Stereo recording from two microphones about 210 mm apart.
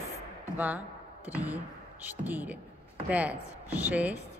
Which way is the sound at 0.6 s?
10° right (ahead or behind).